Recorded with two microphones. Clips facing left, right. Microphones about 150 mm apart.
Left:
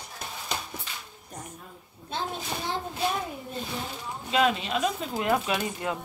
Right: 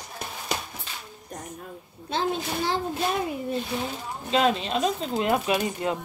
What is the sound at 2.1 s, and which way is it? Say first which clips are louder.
Speech: right 5 dB; 90° right.